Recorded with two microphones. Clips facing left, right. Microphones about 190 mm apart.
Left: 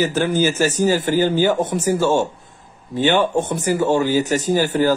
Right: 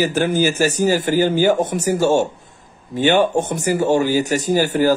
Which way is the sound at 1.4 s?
45° right (ahead or behind).